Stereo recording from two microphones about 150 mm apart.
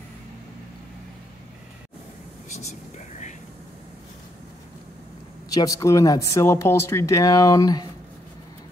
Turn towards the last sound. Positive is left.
turn(degrees=25)  # may be behind; listen again after turning